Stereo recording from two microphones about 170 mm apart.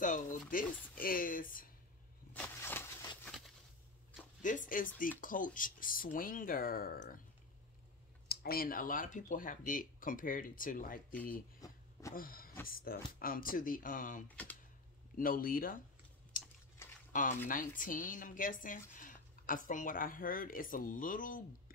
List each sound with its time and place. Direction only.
0.0 s speech: 50° left (ahead or behind)
2.3 s a sound: 10° left (ahead or behind)
3.3 s a sound: centre (ahead or behind)
4.4 s speech: 50° left (ahead or behind)
8.3 s speech: 65° left (ahead or behind)
11.6 s a sound: 20° left (ahead or behind)
12.1 s vehicle: 55° left (ahead or behind)
12.6 s speech: 60° left (ahead or behind)
14.2 s speech: 10° left (ahead or behind)
15.1 s speech: 55° left (ahead or behind)
17.1 s speech: 50° left (ahead or behind)